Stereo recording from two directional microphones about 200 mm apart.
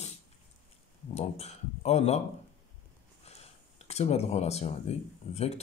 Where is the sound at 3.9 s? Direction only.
30° left (ahead or behind).